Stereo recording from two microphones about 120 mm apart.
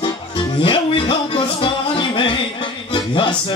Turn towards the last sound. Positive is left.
turn(degrees=40)  # may be behind; listen again after turning